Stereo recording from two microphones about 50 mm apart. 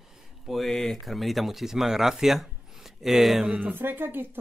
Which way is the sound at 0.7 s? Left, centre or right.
Centre.